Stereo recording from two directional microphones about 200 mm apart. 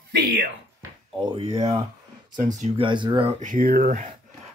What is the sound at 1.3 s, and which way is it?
Speech, 25° right (ahead or behind).